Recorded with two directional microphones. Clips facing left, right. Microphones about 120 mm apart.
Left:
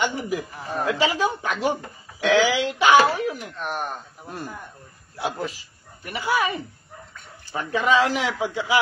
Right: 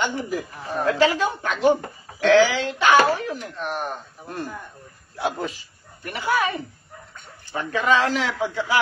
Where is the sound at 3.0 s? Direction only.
5° left (ahead or behind).